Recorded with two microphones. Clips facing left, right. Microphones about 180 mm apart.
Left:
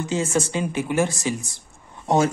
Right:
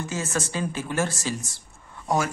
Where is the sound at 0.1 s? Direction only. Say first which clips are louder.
Left 8 dB; 15° left (ahead or behind).